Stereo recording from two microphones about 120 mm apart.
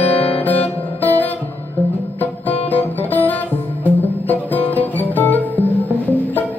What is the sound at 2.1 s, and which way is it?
Music, 15° left (ahead or behind).